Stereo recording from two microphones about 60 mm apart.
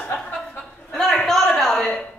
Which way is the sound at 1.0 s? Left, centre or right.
Centre.